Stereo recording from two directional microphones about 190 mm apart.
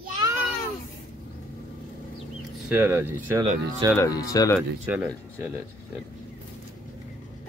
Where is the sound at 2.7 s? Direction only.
10° right (ahead or behind).